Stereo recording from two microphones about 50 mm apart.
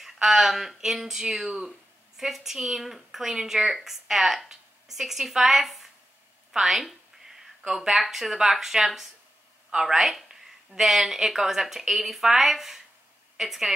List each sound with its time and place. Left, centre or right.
0.0 s a woman's voice: centre